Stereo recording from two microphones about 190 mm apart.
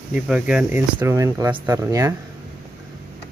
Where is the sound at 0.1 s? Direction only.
5° right (ahead or behind).